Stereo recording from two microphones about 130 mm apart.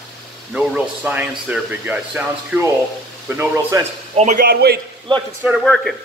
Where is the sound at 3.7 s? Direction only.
30° right (ahead or behind).